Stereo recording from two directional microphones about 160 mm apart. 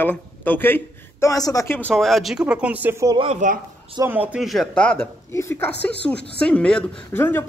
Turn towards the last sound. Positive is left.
turn(degrees=15)  # may be behind; listen again after turning